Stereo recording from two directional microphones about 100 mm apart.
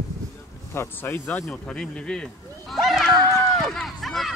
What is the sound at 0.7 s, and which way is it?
Speech, 25° left (ahead or behind).